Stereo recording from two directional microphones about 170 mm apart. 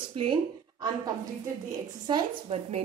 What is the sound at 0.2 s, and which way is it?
Speech, 25° right (ahead or behind).